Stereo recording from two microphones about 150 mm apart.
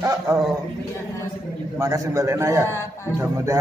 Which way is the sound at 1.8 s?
20° right (ahead or behind).